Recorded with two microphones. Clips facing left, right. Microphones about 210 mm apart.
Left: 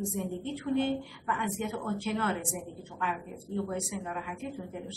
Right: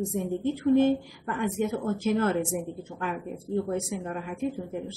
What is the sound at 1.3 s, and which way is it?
A woman's voice, 40° right (ahead or behind).